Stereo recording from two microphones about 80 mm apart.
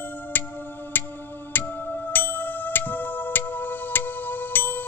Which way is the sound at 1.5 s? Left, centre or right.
Left.